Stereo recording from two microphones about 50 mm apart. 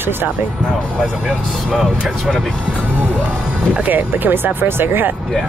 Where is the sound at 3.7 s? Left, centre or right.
Right.